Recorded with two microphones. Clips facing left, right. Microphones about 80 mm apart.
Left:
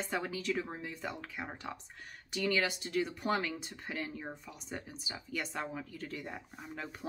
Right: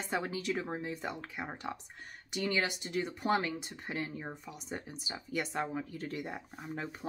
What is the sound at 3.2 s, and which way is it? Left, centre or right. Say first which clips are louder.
Speech: right 2 dB; right.